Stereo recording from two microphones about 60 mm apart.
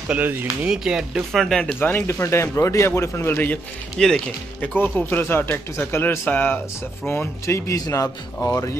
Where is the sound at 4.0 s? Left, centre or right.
Centre.